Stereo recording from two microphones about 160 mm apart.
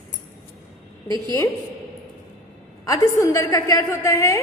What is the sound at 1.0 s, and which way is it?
Speech, 30° right (ahead or behind).